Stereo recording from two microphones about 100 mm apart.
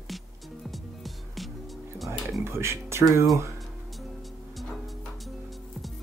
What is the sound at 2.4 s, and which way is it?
Speech, 25° right (ahead or behind).